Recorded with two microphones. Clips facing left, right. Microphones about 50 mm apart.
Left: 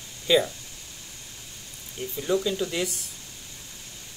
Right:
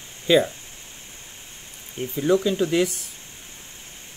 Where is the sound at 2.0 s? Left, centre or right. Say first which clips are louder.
Right 5 dB; right.